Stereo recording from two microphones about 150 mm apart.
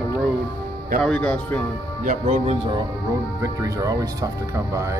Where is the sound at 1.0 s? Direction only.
5° left (ahead or behind).